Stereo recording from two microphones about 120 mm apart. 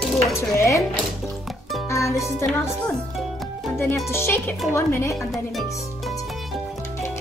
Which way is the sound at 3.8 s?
20° left (ahead or behind).